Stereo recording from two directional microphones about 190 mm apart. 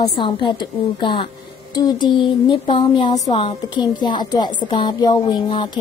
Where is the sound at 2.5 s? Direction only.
25° left (ahead or behind).